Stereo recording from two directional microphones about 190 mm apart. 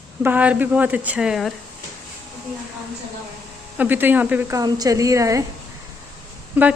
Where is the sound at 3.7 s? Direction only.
10° right (ahead or behind).